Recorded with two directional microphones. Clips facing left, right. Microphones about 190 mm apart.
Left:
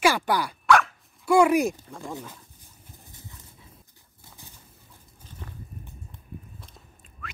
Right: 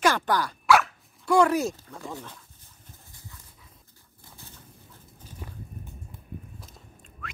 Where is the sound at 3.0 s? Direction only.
20° left (ahead or behind).